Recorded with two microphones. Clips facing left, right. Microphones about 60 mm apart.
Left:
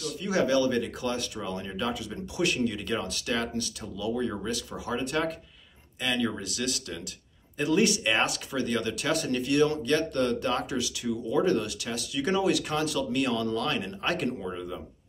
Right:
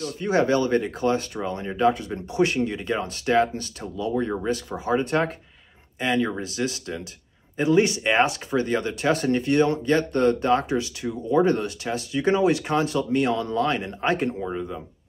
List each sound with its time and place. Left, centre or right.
0.0 s speech: right